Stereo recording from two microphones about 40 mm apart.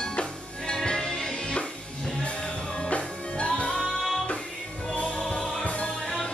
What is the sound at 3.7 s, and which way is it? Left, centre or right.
Music, centre.